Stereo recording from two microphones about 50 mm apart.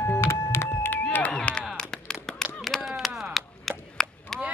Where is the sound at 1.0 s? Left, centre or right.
Left.